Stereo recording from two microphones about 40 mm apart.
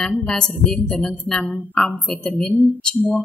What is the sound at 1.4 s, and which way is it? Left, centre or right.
Speech, left.